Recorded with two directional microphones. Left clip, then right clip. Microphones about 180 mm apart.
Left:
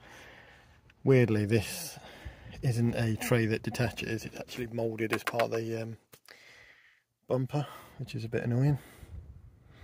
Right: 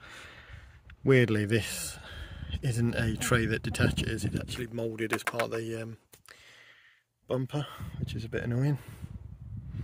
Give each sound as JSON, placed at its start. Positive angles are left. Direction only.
{"t": 0.0, "sound": "a sound", "side_deg": -10}
{"t": 1.0, "sound": "speech", "side_deg": -5}
{"t": 5.1, "sound": "speech", "side_deg": -20}
{"t": 5.5, "sound": "speech", "side_deg": 0}